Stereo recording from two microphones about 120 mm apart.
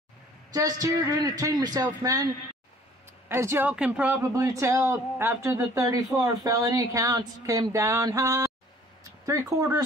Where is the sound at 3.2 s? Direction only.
20° right (ahead or behind).